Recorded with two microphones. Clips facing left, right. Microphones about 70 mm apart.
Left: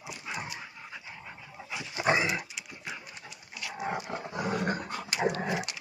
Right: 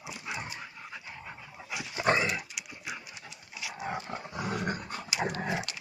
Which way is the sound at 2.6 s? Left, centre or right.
Centre.